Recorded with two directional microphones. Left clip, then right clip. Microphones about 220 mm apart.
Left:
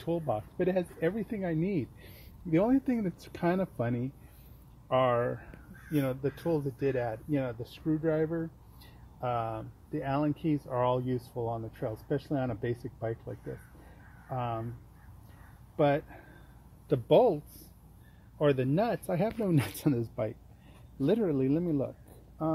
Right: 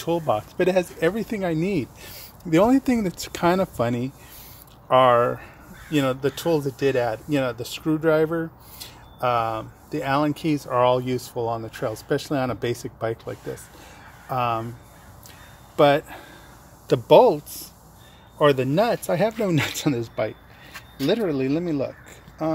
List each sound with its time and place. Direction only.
0.0 s speech: centre (ahead or behind)
14.3 s speech: centre (ahead or behind)
15.7 s speech: centre (ahead or behind)
18.4 s speech: 5° left (ahead or behind)